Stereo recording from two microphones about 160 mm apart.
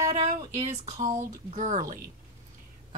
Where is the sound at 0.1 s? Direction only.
40° right (ahead or behind).